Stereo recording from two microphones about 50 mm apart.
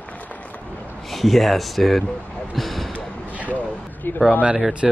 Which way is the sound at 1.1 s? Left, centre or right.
Centre.